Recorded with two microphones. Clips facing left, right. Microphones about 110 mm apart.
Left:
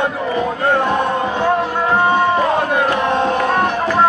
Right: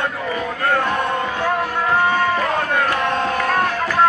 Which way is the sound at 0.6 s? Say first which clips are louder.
Left 2 dB; 20° left (ahead or behind).